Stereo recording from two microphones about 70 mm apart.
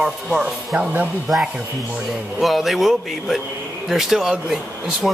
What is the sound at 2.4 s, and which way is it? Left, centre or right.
Speech, centre.